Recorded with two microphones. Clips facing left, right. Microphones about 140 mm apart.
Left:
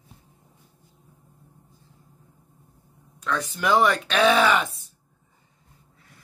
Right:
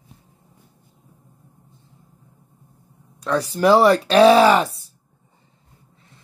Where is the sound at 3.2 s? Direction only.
35° right (ahead or behind).